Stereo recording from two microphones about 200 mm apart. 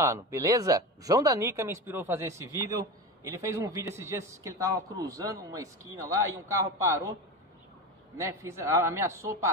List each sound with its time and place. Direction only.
0.0 s speech: 15° right (ahead or behind)
8.2 s speech: 15° right (ahead or behind)